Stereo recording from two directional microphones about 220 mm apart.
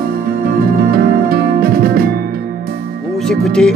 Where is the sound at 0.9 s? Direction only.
45° right (ahead or behind).